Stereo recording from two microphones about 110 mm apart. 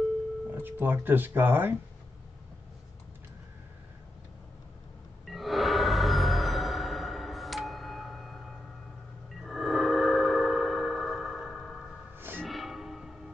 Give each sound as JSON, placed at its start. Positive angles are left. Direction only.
{"t": 0.5, "sound": "speech", "side_deg": -20}
{"t": 5.2, "sound": "music", "side_deg": 0}
{"t": 9.4, "sound": "a sound", "side_deg": 0}
{"t": 12.2, "sound": "music", "side_deg": -20}
{"t": 12.4, "sound": "music", "side_deg": 0}